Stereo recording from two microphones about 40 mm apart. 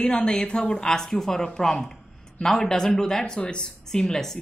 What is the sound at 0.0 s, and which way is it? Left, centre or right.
Speech, centre.